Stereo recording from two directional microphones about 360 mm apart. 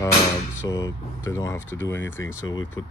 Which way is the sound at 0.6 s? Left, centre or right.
Centre.